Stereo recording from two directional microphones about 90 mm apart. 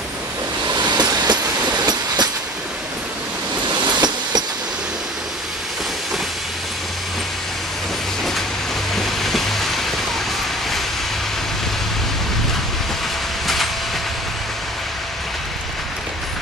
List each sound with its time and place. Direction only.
0.7 s train: 50° right (ahead or behind)
3.7 s a sound: 50° right (ahead or behind)
8.9 s vehicle: centre (ahead or behind)